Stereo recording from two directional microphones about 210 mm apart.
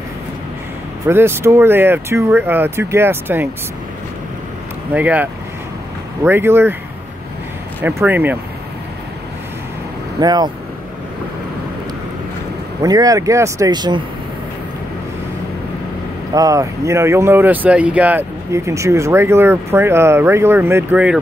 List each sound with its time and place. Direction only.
1.0 s speech: 10° right (ahead or behind)
4.9 s speech: 5° right (ahead or behind)
7.8 s speech: 10° right (ahead or behind)
10.2 s speech: 20° right (ahead or behind)
12.8 s speech: 15° right (ahead or behind)
16.3 s speech: 15° right (ahead or behind)